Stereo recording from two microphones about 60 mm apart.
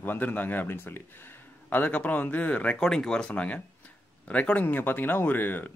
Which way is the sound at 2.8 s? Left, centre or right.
Centre.